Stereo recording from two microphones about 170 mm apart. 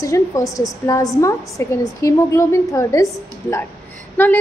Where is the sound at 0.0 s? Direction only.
20° left (ahead or behind).